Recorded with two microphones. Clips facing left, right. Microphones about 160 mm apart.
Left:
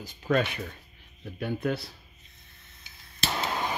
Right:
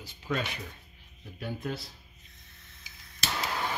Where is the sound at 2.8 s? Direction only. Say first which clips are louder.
Left 4 dB; 25° left (ahead or behind).